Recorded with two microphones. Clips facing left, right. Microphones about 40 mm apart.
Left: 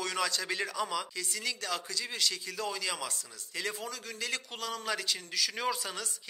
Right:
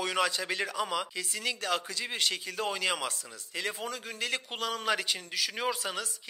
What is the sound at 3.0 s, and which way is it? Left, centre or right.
A man's voice, right.